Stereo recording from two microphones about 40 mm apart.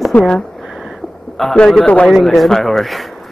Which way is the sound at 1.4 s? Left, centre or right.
Centre.